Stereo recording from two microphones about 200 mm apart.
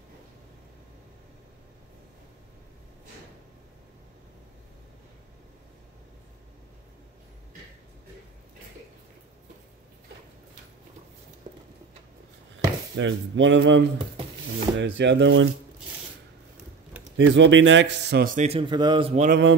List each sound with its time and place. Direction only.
12.5 s a man's voice: 70° right (ahead or behind)
17.2 s a man's voice: 65° right (ahead or behind); by 18.5 s 45° right (ahead or behind)
18.5 s a man's voice: 25° right (ahead or behind)